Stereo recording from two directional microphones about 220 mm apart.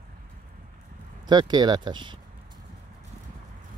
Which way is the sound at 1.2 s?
20° right (ahead or behind).